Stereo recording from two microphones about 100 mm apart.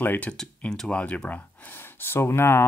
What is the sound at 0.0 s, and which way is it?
Speech, 15° left (ahead or behind).